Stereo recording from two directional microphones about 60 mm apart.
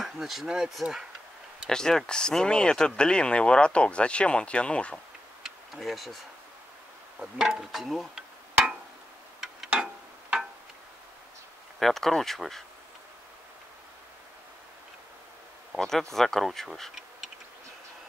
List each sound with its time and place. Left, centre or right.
0.0 s speech: centre
1.7 s speech: centre
5.4 s tick-tock: centre
7.2 s speech: centre
9.7 s a sound: centre
11.8 s speech: centre
15.7 s speech: centre